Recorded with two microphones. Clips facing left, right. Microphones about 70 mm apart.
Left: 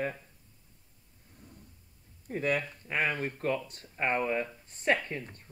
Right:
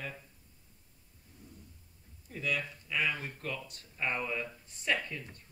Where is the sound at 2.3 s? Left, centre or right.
Left.